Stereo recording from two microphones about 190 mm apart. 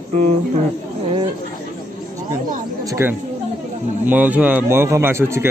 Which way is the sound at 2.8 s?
15° right (ahead or behind).